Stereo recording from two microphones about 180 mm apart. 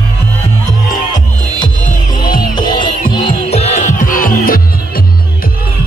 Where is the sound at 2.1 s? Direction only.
25° left (ahead or behind); by 5.0 s 55° left (ahead or behind).